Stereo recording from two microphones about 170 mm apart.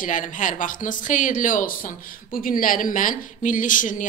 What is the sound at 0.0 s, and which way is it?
A woman's voice, 50° left (ahead or behind).